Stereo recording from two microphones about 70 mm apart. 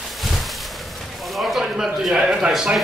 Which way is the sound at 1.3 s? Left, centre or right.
Centre.